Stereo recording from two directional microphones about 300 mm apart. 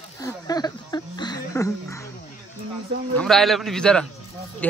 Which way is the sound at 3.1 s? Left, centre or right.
Centre.